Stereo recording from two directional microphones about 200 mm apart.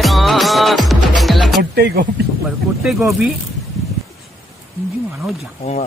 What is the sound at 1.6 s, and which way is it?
Speech, 55° right (ahead or behind).